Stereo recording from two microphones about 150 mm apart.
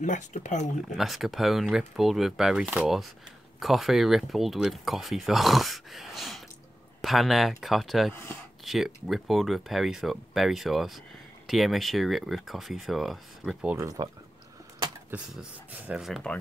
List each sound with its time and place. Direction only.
0.0 s speech: 55° left (ahead or behind)
0.9 s speech: centre (ahead or behind)
8.1 s speech: 15° left (ahead or behind)
8.6 s speech: 5° right (ahead or behind)
13.7 s speech: 25° right (ahead or behind)
15.0 s speech: 10° right (ahead or behind)